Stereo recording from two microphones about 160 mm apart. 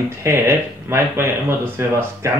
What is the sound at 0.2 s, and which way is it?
Speech, 15° right (ahead or behind).